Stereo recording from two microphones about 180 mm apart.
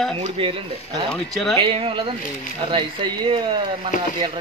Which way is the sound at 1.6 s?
30° right (ahead or behind).